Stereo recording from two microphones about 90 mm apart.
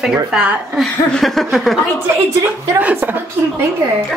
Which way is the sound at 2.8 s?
20° right (ahead or behind).